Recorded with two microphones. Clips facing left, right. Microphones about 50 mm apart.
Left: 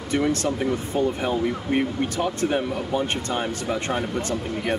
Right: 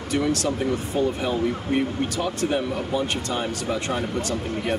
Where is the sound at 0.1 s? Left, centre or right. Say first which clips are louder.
Left 1 dB; left.